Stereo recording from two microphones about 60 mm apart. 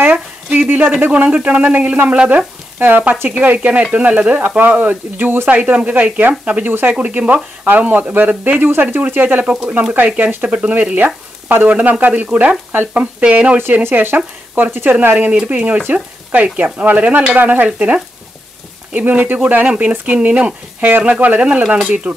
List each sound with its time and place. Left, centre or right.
0.5 s speech: right
1.0 s frying: right
7.6 s speech: right
9.5 s frying: right
13.8 s speech: right
15.4 s frying: right